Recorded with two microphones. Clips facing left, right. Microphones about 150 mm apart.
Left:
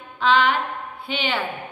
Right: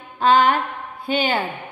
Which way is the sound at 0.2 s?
45° right (ahead or behind).